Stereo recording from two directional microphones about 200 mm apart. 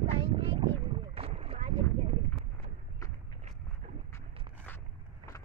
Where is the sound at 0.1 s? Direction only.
25° right (ahead or behind).